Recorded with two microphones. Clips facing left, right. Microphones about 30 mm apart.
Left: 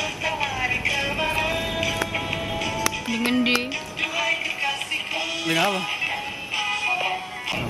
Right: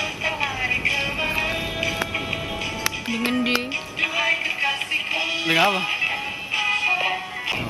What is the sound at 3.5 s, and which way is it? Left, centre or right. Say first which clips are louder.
Music: even; centre.